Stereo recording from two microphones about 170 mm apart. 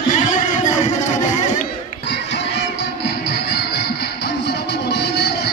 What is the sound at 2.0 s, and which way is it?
Music, 90° left.